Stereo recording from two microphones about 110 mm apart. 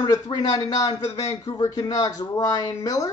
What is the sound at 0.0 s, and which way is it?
Speech, 35° left (ahead or behind).